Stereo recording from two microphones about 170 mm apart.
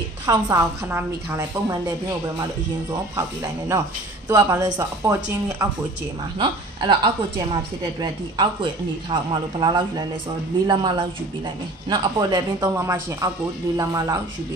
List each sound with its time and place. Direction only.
0.3 s a woman's voice: 15° right (ahead or behind)
6.3 s a woman's voice: 30° right (ahead or behind)